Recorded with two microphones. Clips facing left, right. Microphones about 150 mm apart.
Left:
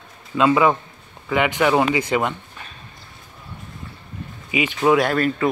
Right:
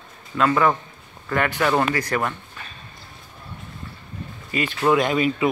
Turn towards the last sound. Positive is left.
turn(degrees=-5)  # may be behind; listen again after turning